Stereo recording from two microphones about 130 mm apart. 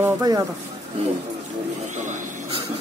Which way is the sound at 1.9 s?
70° right (ahead or behind).